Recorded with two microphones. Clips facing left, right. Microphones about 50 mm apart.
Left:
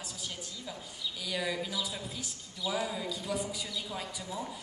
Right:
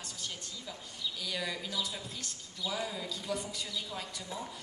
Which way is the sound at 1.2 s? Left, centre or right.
Centre.